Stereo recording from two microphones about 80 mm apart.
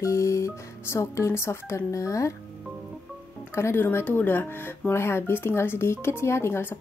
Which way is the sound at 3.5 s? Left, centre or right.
Left.